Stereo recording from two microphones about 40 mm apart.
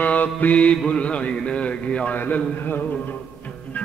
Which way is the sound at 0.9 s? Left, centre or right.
Left.